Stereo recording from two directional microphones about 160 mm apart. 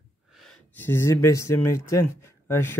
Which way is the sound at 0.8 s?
15° left (ahead or behind).